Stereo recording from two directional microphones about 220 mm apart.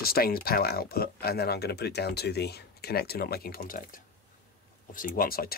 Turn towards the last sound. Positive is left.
turn(degrees=40)  # may be behind; listen again after turning